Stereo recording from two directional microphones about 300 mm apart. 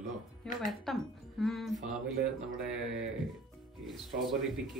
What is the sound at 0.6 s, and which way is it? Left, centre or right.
Speech, centre.